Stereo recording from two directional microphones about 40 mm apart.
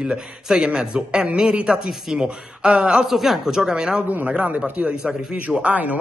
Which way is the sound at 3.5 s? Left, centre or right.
Centre.